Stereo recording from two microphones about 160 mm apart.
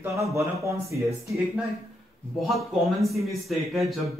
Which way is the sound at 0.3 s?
20° right (ahead or behind).